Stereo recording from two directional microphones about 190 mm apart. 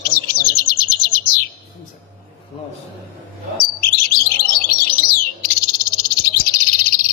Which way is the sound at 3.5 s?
50° left (ahead or behind).